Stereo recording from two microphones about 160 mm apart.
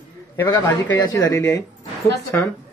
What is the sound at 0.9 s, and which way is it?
A man's voice, 25° left (ahead or behind).